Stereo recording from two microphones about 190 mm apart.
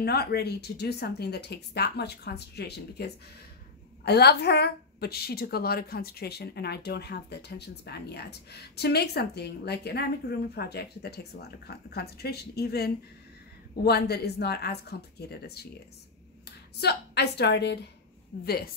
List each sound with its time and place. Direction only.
0.0 s a woman's voice: 55° left (ahead or behind)